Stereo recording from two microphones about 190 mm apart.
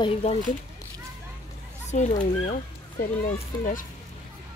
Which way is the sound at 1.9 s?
40° left (ahead or behind).